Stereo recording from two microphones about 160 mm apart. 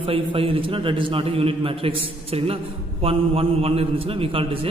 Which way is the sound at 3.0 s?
35° right (ahead or behind).